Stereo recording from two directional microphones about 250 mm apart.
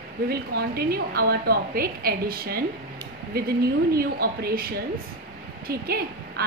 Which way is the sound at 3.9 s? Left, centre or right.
Right.